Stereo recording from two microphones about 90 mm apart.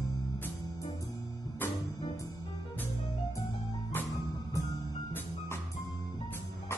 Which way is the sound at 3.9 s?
30° left (ahead or behind).